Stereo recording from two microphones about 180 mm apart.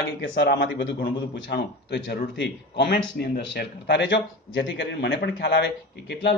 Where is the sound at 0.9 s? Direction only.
60° left (ahead or behind); by 2.1 s 85° left.